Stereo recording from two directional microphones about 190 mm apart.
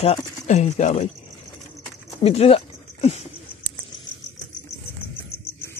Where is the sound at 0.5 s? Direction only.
35° left (ahead or behind).